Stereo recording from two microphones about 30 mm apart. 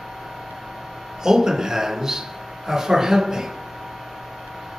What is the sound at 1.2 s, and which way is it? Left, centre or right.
Speech, centre.